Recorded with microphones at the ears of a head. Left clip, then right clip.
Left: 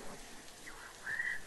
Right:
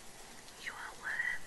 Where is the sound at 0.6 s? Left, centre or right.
Right.